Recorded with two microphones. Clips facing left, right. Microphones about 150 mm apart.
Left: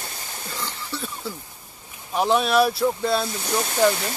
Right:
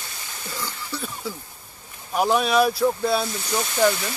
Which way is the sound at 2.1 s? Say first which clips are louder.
Even; 5° right (ahead or behind).